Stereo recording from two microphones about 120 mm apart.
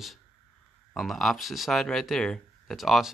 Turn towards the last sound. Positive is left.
turn(degrees=0)  # may be behind; listen again after turning